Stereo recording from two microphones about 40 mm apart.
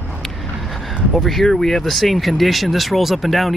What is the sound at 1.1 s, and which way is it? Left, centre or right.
Speech, centre.